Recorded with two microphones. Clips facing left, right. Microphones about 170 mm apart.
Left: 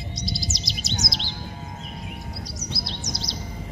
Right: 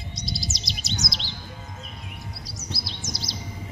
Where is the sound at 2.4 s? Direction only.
Centre (ahead or behind).